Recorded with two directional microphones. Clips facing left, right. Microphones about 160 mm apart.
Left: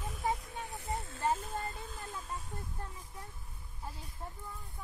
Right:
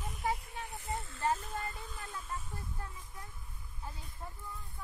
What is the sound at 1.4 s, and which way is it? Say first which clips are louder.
Speech: left 1 dB; 50° left (ahead or behind).